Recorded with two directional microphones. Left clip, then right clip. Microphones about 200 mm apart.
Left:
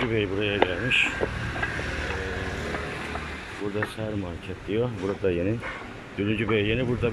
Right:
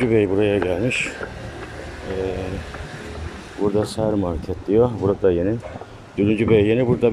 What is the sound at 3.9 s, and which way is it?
Speech, 25° right (ahead or behind).